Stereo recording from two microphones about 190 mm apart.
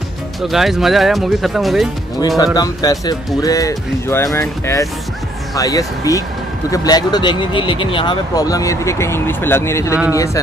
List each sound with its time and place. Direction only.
0.4 s speech: centre (ahead or behind)
2.2 s speech: 20° left (ahead or behind)